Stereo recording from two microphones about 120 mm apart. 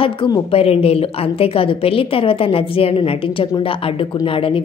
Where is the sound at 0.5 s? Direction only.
55° left (ahead or behind).